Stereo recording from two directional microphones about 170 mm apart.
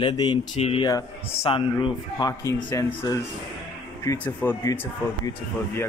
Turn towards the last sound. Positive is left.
turn(degrees=15)  # may be behind; listen again after turning